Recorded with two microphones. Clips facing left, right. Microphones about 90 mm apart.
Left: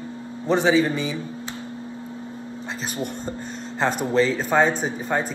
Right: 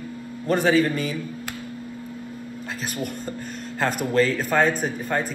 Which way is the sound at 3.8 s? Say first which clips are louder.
Left 1 dB; 30° left (ahead or behind).